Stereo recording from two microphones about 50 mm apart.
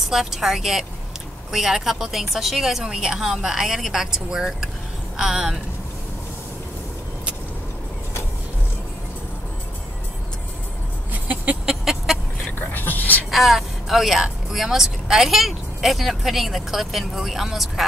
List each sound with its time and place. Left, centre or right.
0.0 s a woman's voice: centre
11.6 s chicken: centre
12.5 s a sound: left
13.3 s speech: centre